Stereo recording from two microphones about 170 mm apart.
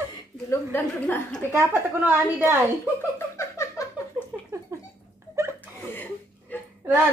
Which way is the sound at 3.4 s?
15° left (ahead or behind).